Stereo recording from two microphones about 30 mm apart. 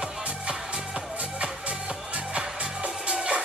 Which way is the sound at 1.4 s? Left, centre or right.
Right.